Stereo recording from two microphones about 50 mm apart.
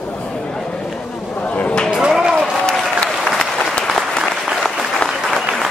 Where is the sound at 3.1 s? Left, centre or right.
Centre.